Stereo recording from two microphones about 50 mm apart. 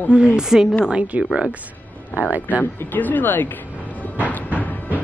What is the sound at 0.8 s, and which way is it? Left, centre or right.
Speech, right.